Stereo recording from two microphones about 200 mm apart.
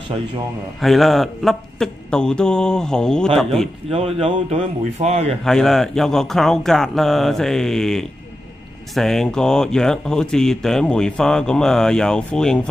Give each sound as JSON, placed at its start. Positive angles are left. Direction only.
{"t": 0.7, "sound": "speech", "side_deg": 0}
{"t": 3.9, "sound": "speech", "side_deg": -30}
{"t": 5.4, "sound": "speech", "side_deg": 0}